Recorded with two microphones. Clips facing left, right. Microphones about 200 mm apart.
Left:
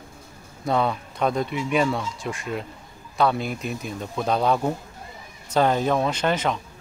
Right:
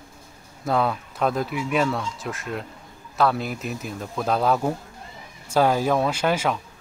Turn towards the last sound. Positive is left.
turn(degrees=-10)  # may be behind; listen again after turning